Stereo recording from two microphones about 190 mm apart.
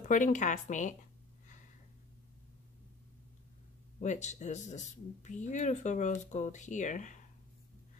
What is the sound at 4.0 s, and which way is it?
Speech, 40° left (ahead or behind).